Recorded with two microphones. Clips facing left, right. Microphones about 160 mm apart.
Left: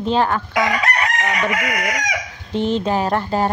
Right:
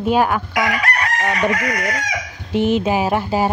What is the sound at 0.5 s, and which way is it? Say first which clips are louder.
Chicken: left 3 dB; 25° left (ahead or behind).